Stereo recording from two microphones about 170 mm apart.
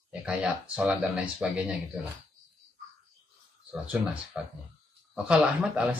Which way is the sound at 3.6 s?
5° right (ahead or behind).